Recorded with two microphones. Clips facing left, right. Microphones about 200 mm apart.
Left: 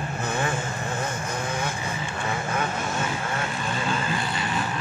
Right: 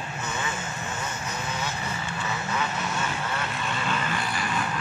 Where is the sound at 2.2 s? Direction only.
50° left (ahead or behind).